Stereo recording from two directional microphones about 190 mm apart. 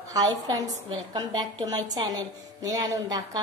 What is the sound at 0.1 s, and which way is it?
A woman's voice, 20° right (ahead or behind).